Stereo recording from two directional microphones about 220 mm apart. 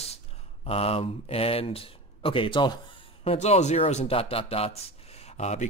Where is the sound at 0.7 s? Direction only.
25° left (ahead or behind).